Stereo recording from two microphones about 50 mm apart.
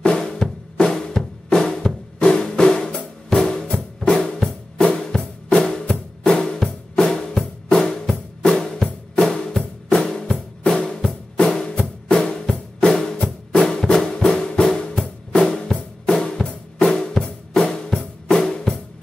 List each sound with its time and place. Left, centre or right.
0.2 s drum: centre
3.7 s drum kit: centre
4.8 s music: left
12.1 s drum: centre
12.9 s music: centre